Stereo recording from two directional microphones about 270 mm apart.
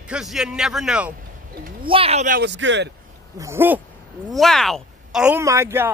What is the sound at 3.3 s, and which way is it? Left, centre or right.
Speech, centre.